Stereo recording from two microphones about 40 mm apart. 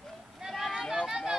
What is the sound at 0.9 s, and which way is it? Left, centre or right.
Run, centre.